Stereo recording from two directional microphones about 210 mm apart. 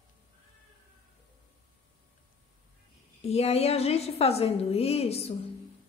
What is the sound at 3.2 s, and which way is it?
A woman's voice, 30° left (ahead or behind).